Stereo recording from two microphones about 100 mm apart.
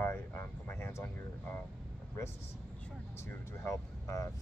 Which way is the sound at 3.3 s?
25° left (ahead or behind).